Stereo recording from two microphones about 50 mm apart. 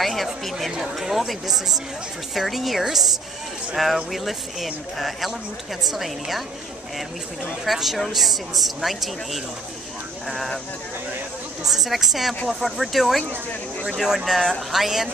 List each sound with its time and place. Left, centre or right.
0.0 s speech: centre
7.6 s speech: centre
11.6 s speech: centre